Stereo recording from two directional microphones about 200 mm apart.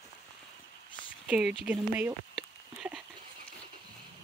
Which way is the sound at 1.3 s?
5° right (ahead or behind).